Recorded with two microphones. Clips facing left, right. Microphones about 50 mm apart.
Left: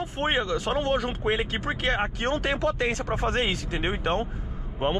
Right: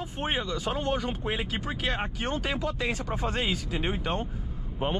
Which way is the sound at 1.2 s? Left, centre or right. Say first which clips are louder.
Left 5 dB; left.